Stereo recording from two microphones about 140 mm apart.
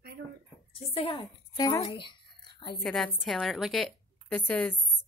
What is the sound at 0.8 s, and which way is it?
Speech, 45° left (ahead or behind).